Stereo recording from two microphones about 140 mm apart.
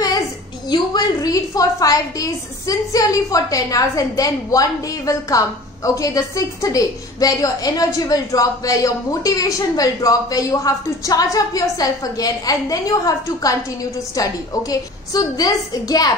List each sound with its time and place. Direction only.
0.7 s a woman's voice: 25° left (ahead or behind)